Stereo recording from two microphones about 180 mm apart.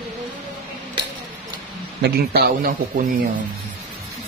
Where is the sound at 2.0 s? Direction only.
60° right (ahead or behind).